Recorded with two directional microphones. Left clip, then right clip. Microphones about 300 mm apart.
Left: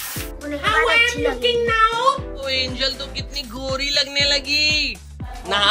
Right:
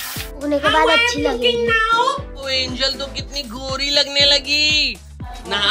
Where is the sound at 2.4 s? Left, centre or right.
Centre.